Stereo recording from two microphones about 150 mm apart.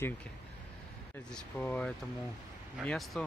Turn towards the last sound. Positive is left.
turn(degrees=0)  # may be behind; listen again after turning